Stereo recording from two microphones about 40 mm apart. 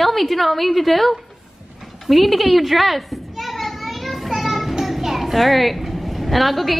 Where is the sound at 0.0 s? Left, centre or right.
Centre.